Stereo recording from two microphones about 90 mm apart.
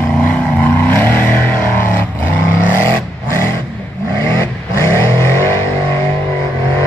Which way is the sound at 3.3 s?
30° left (ahead or behind).